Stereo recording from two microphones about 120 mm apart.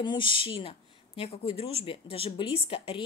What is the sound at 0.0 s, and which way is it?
Speech, 40° left (ahead or behind).